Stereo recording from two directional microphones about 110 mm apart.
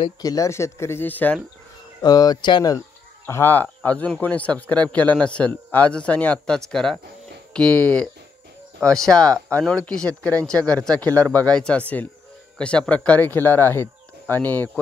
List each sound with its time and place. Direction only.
0.2 s speech: 30° left (ahead or behind); by 1.4 s 15° left (ahead or behind)
2.0 s speech: 35° left (ahead or behind)
3.3 s a man's voice: 20° left (ahead or behind)